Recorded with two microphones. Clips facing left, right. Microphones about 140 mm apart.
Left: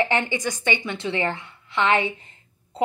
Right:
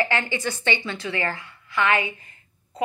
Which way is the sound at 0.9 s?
25° left (ahead or behind).